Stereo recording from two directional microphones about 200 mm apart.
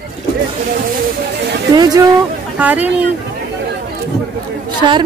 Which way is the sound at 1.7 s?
20° right (ahead or behind).